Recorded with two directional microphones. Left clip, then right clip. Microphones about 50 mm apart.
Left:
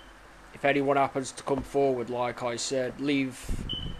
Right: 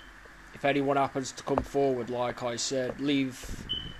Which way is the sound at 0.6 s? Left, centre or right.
Left.